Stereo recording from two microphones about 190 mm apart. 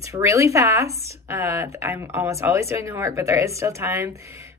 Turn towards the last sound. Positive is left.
turn(degrees=-15)  # may be behind; listen again after turning